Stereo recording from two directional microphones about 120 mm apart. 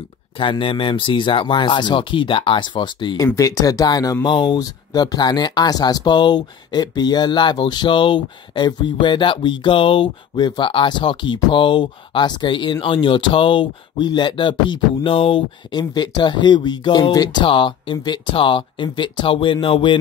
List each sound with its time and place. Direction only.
0.4 s speech: 45° left (ahead or behind)
3.3 s speech: 30° left (ahead or behind)
4.3 s speech: 40° left (ahead or behind)
15.8 s speech: 35° left (ahead or behind)